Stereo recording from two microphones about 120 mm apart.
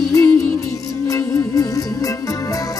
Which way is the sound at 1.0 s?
30° left (ahead or behind).